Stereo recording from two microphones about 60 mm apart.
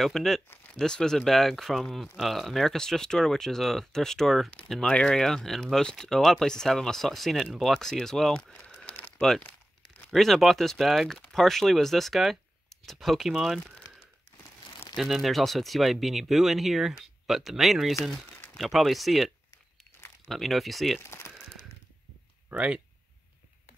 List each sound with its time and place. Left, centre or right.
0.0 s speech: centre
8.4 s a sound: centre
10.1 s speech: centre
15.0 s speech: centre
22.5 s speech: centre